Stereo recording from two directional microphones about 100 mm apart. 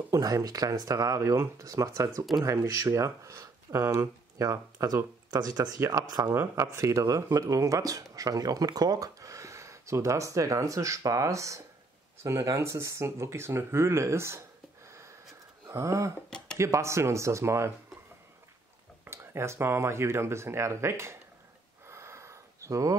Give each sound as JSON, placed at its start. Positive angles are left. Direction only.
{"t": 0.1, "sound": "speech", "side_deg": -35}
{"t": 5.3, "sound": "speech", "side_deg": -40}
{"t": 5.8, "sound": "speech", "side_deg": -30}
{"t": 15.7, "sound": "speech", "side_deg": -30}
{"t": 16.3, "sound": "a sound", "side_deg": 5}
{"t": 16.5, "sound": "speech", "side_deg": -30}
{"t": 19.0, "sound": "speech", "side_deg": -25}
{"t": 21.8, "sound": "a sound", "side_deg": -30}